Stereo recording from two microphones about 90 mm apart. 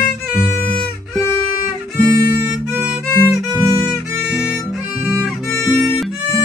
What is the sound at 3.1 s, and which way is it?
Music, 40° left (ahead or behind).